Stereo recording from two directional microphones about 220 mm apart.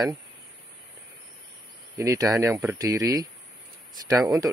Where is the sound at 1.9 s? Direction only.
15° right (ahead or behind).